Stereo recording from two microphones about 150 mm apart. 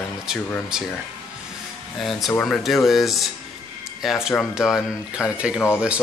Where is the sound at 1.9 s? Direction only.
Centre (ahead or behind).